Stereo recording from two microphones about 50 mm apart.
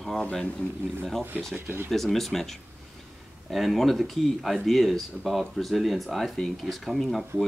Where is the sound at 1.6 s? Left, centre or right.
Right.